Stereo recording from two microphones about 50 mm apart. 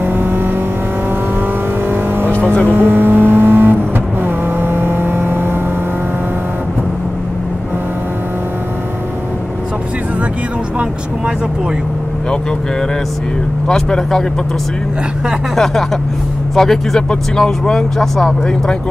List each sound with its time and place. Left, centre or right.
0.0 s vehicle: right
1.9 s vehicle: right
2.3 s vehicle: left
2.7 s vehicle: right
13.7 s speech: centre
15.5 s speech: centre